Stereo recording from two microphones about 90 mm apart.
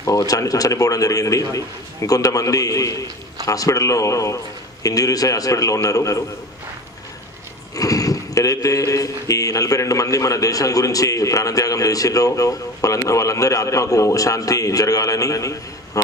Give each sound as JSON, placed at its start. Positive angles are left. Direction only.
{"t": 0.0, "sound": "speech", "side_deg": 40}
{"t": 7.7, "sound": "speech", "side_deg": 40}